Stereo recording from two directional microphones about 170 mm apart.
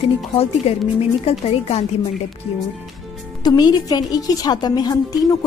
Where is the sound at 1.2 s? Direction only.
35° left (ahead or behind).